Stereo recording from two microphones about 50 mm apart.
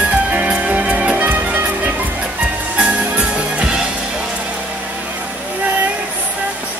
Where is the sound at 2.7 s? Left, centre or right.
Centre.